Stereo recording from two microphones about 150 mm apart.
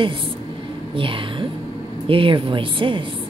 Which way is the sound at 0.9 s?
35° right (ahead or behind).